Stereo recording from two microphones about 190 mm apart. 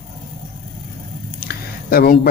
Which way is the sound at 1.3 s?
50° left (ahead or behind).